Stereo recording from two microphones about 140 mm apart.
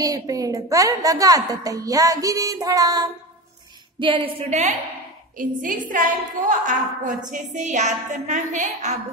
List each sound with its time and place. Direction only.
0.0 s a woman's voice: 25° right (ahead or behind)
4.0 s speech: 40° right (ahead or behind)
5.4 s a woman's voice: 70° right (ahead or behind)